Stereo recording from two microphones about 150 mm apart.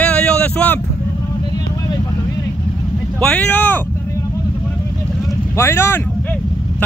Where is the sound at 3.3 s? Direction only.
10° left (ahead or behind).